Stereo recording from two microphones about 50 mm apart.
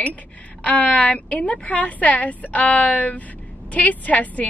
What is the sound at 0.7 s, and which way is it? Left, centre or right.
A woman's voice, left.